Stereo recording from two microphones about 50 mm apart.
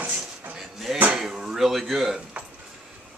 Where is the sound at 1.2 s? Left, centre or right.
Centre.